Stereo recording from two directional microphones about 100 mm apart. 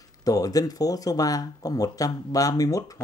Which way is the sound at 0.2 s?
35° left (ahead or behind).